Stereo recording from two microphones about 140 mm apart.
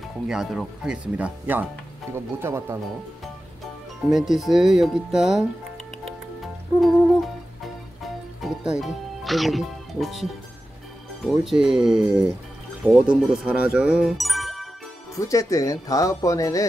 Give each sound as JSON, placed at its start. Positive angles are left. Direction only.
{"t": 0.3, "sound": "speech", "side_deg": -5}
{"t": 4.1, "sound": "speech", "side_deg": 0}
{"t": 8.4, "sound": "speech", "side_deg": -5}
{"t": 11.2, "sound": "speech", "side_deg": 0}
{"t": 15.1, "sound": "speech", "side_deg": 25}